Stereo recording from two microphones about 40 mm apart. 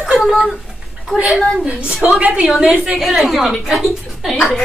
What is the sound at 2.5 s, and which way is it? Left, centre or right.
A woman's voice, centre.